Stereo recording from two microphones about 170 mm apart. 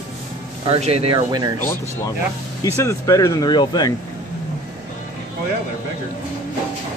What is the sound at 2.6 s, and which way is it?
Speech, 20° left (ahead or behind).